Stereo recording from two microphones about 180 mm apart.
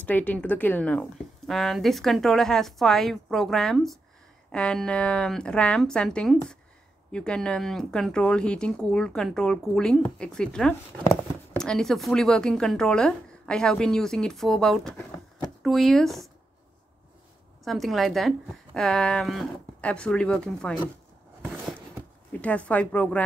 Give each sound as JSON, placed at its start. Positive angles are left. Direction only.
{"t": 0.0, "sound": "speech", "side_deg": 10}
{"t": 17.6, "sound": "speech", "side_deg": 0}
{"t": 21.4, "sound": "a sound", "side_deg": 0}
{"t": 22.4, "sound": "speech", "side_deg": 5}